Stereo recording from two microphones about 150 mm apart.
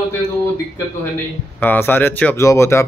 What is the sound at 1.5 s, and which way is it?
A man's voice, 10° left (ahead or behind).